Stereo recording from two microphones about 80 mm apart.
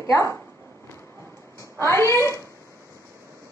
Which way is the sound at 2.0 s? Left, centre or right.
Left.